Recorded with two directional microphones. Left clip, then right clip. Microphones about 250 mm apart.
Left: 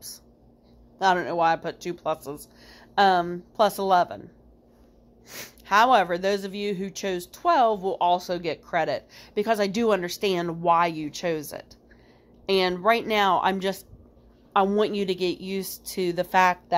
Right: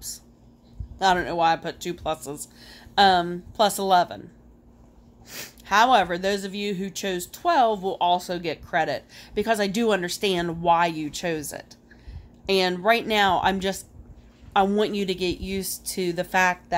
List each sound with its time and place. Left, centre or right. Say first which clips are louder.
0.9 s speech: right 1 dB; centre
5.3 s speech: even; centre